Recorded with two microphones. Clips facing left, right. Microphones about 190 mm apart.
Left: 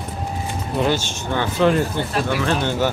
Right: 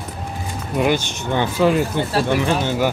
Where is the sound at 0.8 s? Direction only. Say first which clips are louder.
Right 3 dB; 15° right (ahead or behind).